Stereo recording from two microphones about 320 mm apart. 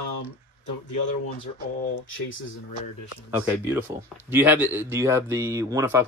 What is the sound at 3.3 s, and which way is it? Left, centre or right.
Speech, centre.